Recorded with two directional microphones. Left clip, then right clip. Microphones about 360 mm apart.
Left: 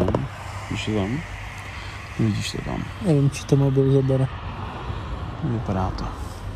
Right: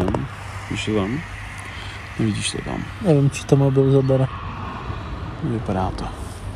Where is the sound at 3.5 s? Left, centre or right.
Right.